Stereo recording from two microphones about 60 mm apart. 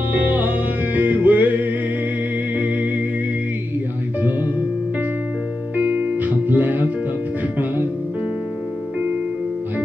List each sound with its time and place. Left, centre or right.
0.1 s music: right
5.8 s music: right